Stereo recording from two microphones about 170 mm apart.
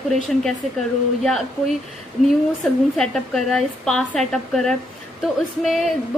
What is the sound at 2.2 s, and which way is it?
A woman's voice, 5° left (ahead or behind).